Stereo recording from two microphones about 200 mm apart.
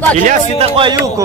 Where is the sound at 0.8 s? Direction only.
20° right (ahead or behind).